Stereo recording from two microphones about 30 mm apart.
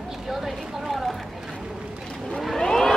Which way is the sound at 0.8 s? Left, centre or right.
Centre.